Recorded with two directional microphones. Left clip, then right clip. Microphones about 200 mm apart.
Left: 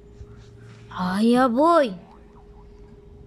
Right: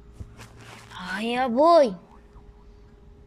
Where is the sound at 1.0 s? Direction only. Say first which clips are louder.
Left 6 dB; 30° left (ahead or behind).